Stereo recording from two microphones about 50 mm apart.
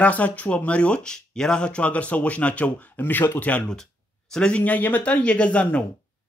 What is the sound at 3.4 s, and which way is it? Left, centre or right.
Speech, left.